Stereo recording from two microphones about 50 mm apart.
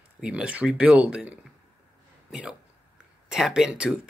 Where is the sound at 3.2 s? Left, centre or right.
Centre.